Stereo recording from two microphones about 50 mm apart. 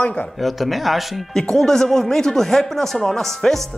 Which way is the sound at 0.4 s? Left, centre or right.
Centre.